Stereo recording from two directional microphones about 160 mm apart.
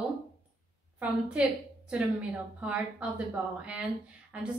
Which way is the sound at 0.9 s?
10° right (ahead or behind).